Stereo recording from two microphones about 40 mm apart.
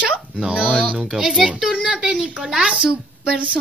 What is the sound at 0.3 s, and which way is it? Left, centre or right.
A woman's voice, right.